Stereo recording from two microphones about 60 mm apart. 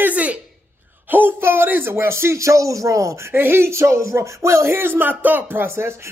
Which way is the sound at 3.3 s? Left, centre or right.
Right.